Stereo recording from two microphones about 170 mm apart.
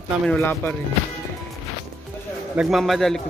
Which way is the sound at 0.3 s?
10° left (ahead or behind).